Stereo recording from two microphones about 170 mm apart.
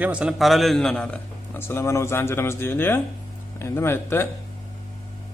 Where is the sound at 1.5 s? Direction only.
15° left (ahead or behind).